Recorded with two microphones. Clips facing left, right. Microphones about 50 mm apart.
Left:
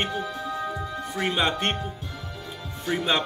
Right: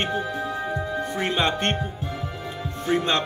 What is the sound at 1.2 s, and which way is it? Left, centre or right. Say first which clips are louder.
Speech: even; centre.